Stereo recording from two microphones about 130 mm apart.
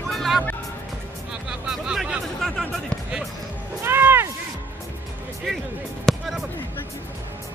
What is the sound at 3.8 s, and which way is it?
Music, 15° right (ahead or behind).